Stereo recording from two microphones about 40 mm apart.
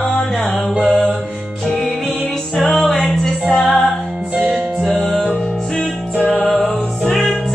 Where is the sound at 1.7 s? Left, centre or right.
Centre.